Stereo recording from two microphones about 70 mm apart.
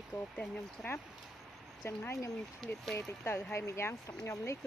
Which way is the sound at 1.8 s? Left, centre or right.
Left.